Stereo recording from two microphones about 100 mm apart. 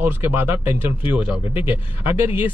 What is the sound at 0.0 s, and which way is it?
Speech, 20° right (ahead or behind).